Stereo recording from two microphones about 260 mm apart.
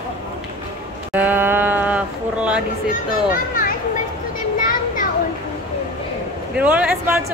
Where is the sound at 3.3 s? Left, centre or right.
Left.